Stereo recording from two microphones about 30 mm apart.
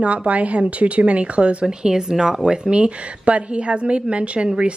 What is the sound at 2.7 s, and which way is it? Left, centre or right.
A woman's voice, right.